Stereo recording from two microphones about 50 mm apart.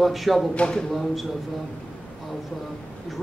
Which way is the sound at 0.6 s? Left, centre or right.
Centre.